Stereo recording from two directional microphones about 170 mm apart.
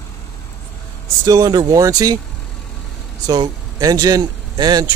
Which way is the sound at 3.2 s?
20° right (ahead or behind).